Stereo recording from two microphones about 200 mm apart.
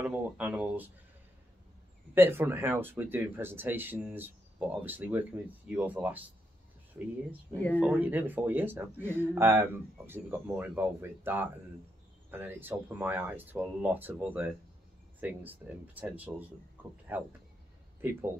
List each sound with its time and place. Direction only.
0.0 s speech: 10° right (ahead or behind)
2.1 s speech: 10° right (ahead or behind)
7.5 s speech: 10° left (ahead or behind)
7.8 s speech: 10° right (ahead or behind)